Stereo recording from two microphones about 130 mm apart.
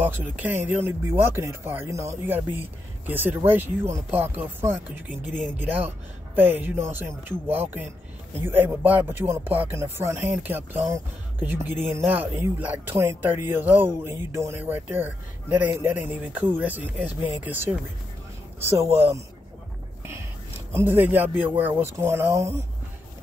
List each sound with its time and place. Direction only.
0.0 s speech: 15° right (ahead or behind)
20.7 s speech: 15° right (ahead or behind)